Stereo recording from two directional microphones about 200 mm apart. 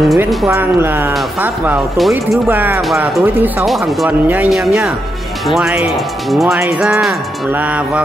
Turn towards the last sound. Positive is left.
turn(degrees=-5)  # may be behind; listen again after turning